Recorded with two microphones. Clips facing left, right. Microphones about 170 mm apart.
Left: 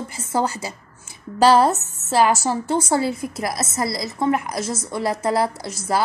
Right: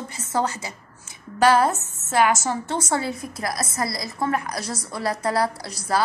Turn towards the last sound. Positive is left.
turn(degrees=25)  # may be behind; listen again after turning